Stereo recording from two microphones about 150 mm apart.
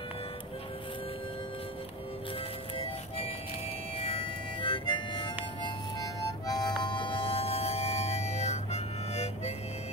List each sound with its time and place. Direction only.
4.0 s harmonica: 40° left (ahead or behind)
6.4 s music: 25° left (ahead or behind); by 9.5 s 45° left (ahead or behind)